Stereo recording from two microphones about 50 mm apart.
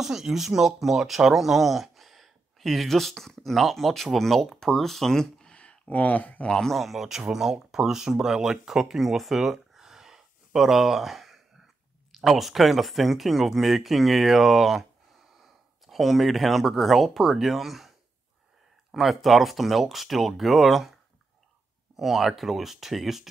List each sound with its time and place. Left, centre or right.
0.0 s speech: centre
5.6 s a sound: left
6.4 s a man's voice: centre
6.7 s speech: centre
18.9 s speech: centre